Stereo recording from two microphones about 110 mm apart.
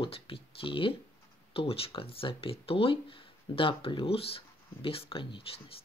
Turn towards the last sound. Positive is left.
turn(degrees=55)  # may be behind; listen again after turning